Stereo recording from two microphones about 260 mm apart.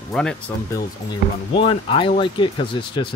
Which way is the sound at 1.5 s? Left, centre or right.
Centre.